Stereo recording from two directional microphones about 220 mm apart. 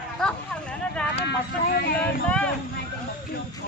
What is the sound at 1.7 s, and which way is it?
Speech, 45° left (ahead or behind).